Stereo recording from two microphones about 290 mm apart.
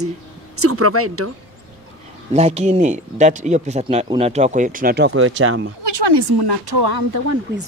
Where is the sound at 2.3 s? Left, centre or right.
Right.